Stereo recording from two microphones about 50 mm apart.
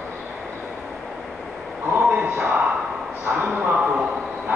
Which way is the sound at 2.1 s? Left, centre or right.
Right.